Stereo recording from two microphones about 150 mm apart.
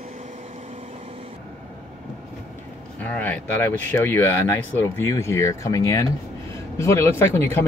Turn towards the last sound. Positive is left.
turn(degrees=15)  # may be behind; listen again after turning